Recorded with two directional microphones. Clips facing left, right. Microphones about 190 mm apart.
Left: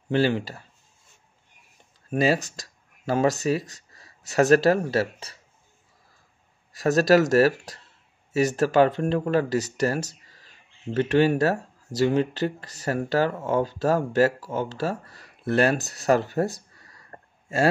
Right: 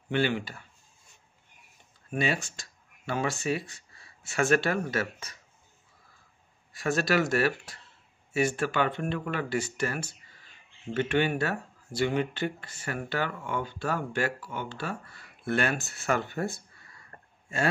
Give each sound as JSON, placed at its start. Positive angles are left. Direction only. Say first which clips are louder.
{"t": 0.1, "sound": "speech", "louder": "left 5 dB", "side_deg": 40}
{"t": 2.0, "sound": "speech", "louder": "left 7 dB", "side_deg": 40}
{"t": 6.7, "sound": "speech", "louder": "left 8 dB", "side_deg": 40}